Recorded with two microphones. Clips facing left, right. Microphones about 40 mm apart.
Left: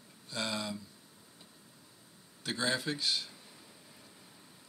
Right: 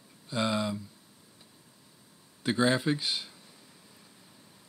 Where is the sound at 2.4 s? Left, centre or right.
Centre.